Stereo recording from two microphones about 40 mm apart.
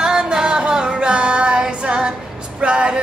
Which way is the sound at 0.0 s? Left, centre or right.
Centre.